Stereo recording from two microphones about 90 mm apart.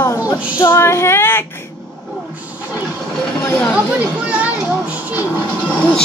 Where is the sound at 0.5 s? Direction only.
25° left (ahead or behind).